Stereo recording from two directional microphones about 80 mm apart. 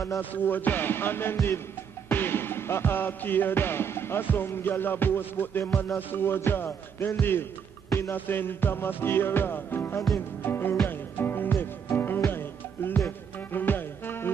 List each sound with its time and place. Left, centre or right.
0.2 s music: left